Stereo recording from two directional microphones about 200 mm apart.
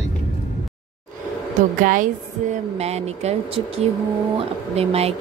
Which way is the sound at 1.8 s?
45° right (ahead or behind).